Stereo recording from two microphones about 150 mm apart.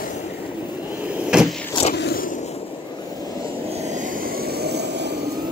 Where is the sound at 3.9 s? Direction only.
65° right (ahead or behind); by 4.8 s 90° right.